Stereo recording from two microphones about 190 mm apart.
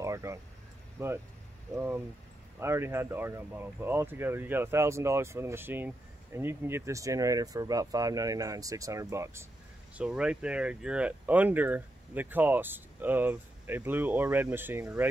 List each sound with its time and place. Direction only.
0.0 s a sound: 15° right (ahead or behind)
0.9 s speech: 15° right (ahead or behind)
2.6 s speech: 15° right (ahead or behind)